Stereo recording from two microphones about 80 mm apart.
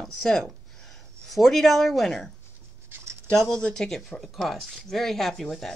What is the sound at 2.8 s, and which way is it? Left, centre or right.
Writing, right.